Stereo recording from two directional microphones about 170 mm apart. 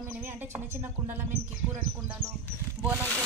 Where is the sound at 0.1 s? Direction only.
10° right (ahead or behind).